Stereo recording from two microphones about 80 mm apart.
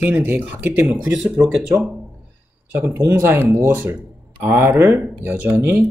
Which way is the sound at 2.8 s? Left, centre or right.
Right.